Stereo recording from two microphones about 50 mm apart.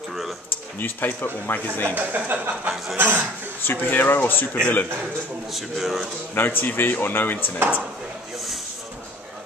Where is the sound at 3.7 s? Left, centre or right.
Left.